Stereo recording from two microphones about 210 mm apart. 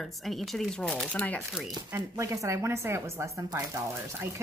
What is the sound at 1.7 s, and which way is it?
Speech, 15° right (ahead or behind).